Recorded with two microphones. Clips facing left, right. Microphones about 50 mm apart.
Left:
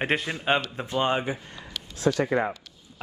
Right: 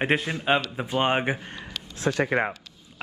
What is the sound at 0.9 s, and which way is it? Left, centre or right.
Speech, right.